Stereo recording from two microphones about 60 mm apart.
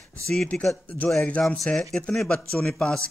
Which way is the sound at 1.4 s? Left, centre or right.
Centre.